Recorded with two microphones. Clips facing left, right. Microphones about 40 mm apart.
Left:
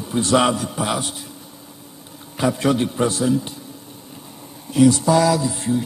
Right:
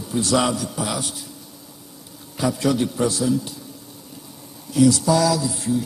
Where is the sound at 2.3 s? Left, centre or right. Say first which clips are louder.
Left 2 dB; left.